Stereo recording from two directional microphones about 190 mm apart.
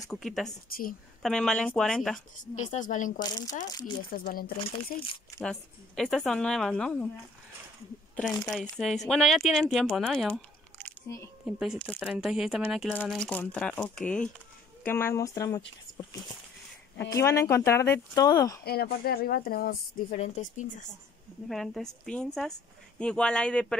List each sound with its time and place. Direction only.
0.1 s speech: centre (ahead or behind)
0.7 s speech: 50° left (ahead or behind)
1.2 s speech: 5° left (ahead or behind)
2.4 s speech: 40° left (ahead or behind)
3.2 s speech: 20° left (ahead or behind)
4.1 s speech: 50° left (ahead or behind)
4.6 s speech: 30° left (ahead or behind)
5.4 s speech: 5° left (ahead or behind)
8.5 s speech: centre (ahead or behind); by 15.6 s 15° left (ahead or behind)
17.1 s speech: 15° left (ahead or behind)
18.6 s speech: 55° left (ahead or behind)
20.2 s speech: 40° left (ahead or behind)
21.5 s speech: centre (ahead or behind)